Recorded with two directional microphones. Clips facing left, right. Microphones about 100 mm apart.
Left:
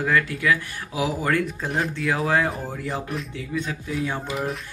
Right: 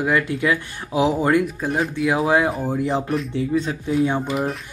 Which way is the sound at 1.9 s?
15° right (ahead or behind).